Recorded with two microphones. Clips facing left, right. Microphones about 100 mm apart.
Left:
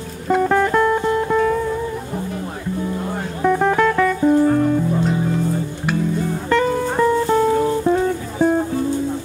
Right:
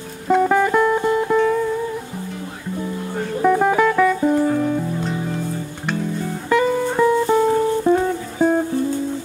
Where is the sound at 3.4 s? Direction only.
5° right (ahead or behind).